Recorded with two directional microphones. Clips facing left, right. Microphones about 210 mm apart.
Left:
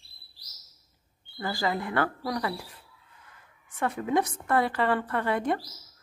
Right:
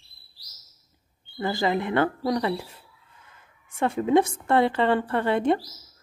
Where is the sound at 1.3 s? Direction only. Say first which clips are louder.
Right 5 dB; 25° right (ahead or behind).